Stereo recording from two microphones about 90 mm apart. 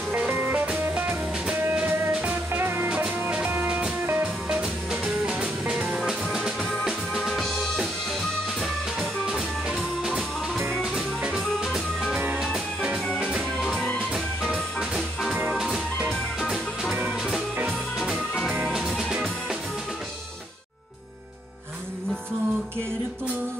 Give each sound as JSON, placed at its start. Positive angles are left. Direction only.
{"t": 0.3, "sound": "music", "side_deg": -25}
{"t": 0.7, "sound": "music", "side_deg": -15}
{"t": 4.5, "sound": "music", "side_deg": -10}
{"t": 6.8, "sound": "drum", "side_deg": -5}
{"t": 8.5, "sound": "music", "side_deg": 0}
{"t": 13.6, "sound": "music", "side_deg": 5}
{"t": 13.9, "sound": "music", "side_deg": -10}
{"t": 18.7, "sound": "music", "side_deg": -5}